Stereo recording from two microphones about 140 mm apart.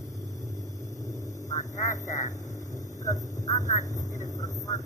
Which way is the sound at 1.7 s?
25° left (ahead or behind).